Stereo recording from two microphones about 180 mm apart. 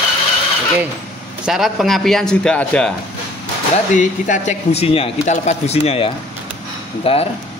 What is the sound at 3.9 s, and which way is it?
Speech, 45° left (ahead or behind).